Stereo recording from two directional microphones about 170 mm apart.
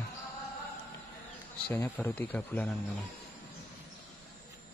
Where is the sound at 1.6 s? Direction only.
10° left (ahead or behind).